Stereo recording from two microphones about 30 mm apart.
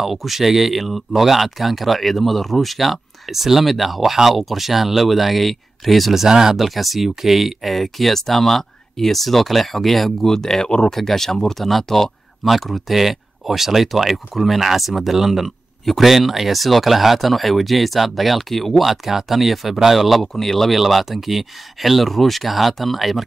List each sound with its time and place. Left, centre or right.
0.0 s speech: centre
6.2 s speech: centre
6.5 s speech: centre
10.2 s speech: centre
11.0 s speech: centre
18.9 s speech: centre